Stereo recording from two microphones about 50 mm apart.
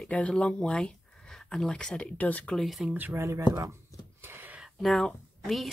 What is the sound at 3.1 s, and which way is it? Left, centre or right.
Speech, right.